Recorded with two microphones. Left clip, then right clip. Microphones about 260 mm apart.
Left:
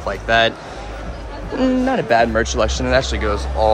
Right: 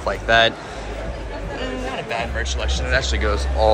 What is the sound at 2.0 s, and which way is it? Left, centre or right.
Speech, left.